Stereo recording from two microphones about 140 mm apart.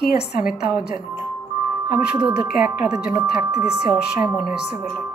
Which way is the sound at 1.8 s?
10° right (ahead or behind).